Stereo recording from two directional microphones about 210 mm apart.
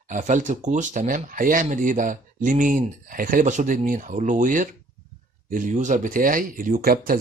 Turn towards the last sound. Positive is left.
turn(degrees=-45)  # may be behind; listen again after turning